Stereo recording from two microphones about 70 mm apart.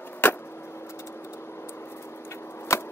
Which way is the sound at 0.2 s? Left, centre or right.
Left.